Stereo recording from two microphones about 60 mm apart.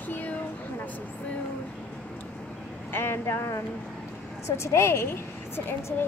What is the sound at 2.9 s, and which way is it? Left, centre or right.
Speech, left.